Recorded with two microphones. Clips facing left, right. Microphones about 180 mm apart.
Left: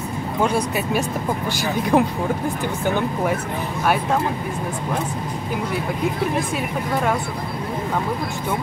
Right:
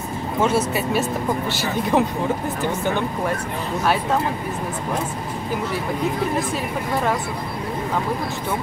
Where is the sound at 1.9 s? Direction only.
15° left (ahead or behind).